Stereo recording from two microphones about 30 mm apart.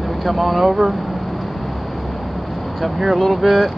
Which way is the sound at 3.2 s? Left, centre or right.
Centre.